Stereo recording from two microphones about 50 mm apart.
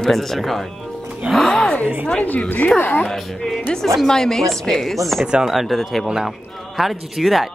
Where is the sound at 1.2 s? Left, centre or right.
Right.